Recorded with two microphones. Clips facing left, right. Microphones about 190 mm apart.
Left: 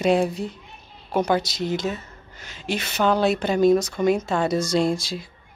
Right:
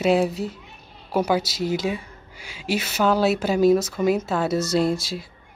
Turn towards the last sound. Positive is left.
turn(degrees=-5)  # may be behind; listen again after turning